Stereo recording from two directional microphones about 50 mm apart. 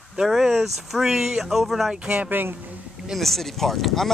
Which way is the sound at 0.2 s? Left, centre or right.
Centre.